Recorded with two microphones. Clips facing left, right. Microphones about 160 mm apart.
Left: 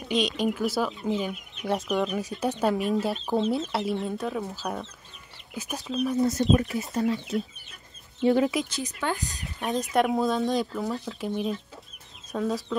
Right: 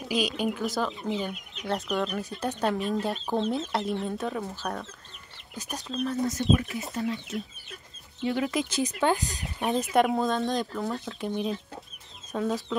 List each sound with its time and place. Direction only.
0.1 s speech: 5° right (ahead or behind)
0.7 s speech: 10° left (ahead or behind)
4.6 s speech: 10° left (ahead or behind)
6.3 s speech: 40° left (ahead or behind)
8.2 s speech: 35° left (ahead or behind)
8.7 s speech: 20° right (ahead or behind)
9.7 s speech: centre (ahead or behind)